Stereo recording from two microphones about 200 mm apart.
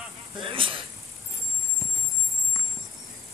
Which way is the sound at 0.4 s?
25° right (ahead or behind).